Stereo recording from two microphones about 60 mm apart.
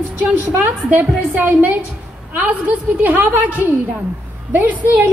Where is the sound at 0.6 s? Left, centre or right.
Right.